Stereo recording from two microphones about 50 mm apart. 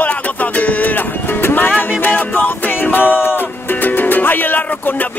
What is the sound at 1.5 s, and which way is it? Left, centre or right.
Music, left.